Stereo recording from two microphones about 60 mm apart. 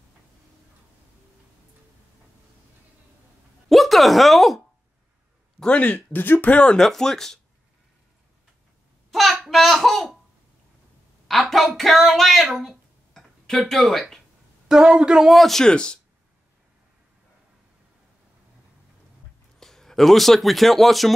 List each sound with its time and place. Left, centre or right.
3.6 s a sound: centre
5.7 s speech: left
6.5 s speech: centre
6.8 s speech: centre
9.1 s a sound: centre
9.5 s speech: centre
11.2 s a woman's voice: centre
13.1 s a sound: centre
14.7 s a woman's voice: centre
15.4 s speech: centre
19.6 s speech: centre